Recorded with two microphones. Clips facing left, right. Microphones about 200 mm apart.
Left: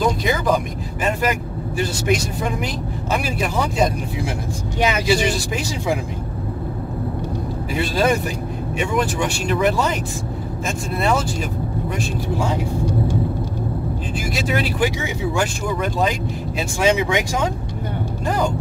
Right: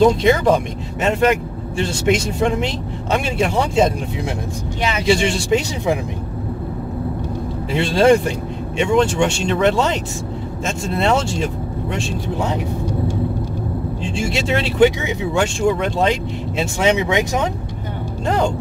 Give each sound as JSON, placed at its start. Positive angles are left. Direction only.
{"t": 0.0, "sound": "speech", "side_deg": -25}
{"t": 1.8, "sound": "speech", "side_deg": -25}
{"t": 7.7, "sound": "speech", "side_deg": -25}
{"t": 11.0, "sound": "speech", "side_deg": -25}
{"t": 14.1, "sound": "speech", "side_deg": -25}
{"t": 18.2, "sound": "a sound", "side_deg": -25}